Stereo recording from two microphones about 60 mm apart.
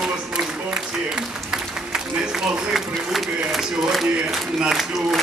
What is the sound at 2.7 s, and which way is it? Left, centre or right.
A man's voice, centre.